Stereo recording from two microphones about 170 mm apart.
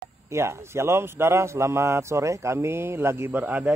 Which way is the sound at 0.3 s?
15° right (ahead or behind).